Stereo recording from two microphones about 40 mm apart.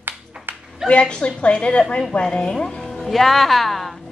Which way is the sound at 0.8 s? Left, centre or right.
Left.